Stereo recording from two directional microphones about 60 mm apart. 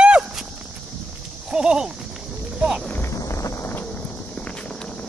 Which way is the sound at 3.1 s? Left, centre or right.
Left.